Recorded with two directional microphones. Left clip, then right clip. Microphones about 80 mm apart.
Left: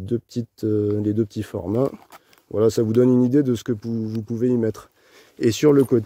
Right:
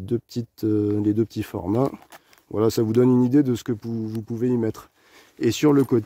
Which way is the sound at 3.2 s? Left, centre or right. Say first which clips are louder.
Left 1 dB; left.